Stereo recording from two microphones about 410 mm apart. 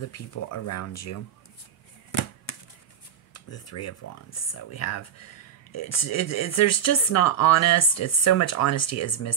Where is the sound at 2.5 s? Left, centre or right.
Left.